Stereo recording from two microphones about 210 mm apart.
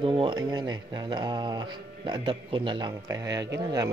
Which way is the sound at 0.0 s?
25° right (ahead or behind).